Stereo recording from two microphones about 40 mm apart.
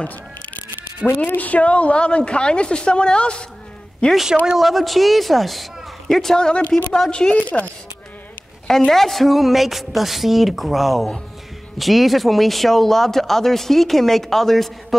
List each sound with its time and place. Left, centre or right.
1.2 s a woman's voice: left
4.6 s a woman's voice: centre; by 7.3 s left
7.3 s a woman's voice: left
8.6 s speech: centre